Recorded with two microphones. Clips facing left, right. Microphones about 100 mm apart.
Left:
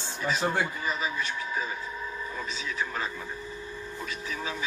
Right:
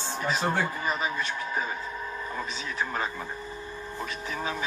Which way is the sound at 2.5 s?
45° right (ahead or behind).